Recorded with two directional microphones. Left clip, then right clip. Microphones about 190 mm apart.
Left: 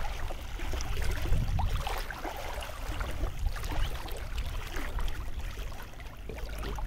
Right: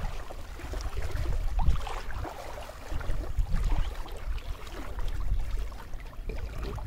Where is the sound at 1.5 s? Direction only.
55° left (ahead or behind).